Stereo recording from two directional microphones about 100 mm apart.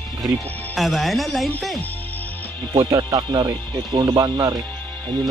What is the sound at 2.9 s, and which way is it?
Speech, 40° right (ahead or behind).